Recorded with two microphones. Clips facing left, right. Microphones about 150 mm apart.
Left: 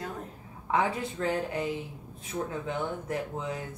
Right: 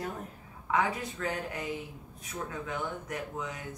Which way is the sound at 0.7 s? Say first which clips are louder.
Left 2 dB; 30° left (ahead or behind).